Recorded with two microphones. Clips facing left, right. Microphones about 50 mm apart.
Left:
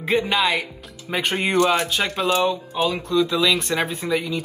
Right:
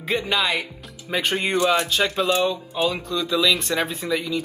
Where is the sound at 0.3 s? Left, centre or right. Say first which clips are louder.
Left 2 dB; centre.